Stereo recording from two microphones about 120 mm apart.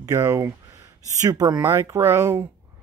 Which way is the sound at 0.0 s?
25° right (ahead or behind).